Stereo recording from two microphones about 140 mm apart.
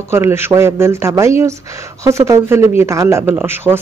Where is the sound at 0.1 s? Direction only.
15° right (ahead or behind).